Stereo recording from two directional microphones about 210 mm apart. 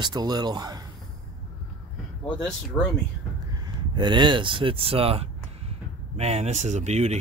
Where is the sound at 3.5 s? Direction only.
20° right (ahead or behind).